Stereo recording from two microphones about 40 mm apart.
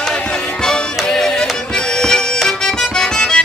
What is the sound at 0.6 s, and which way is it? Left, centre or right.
Music, centre.